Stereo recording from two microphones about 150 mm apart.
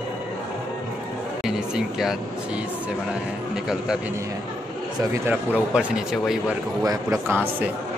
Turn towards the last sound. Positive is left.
turn(degrees=-20)  # may be behind; listen again after turning